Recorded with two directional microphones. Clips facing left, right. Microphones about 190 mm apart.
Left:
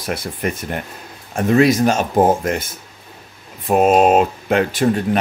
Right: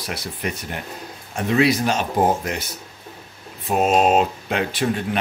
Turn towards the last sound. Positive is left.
turn(degrees=45)  # may be behind; listen again after turning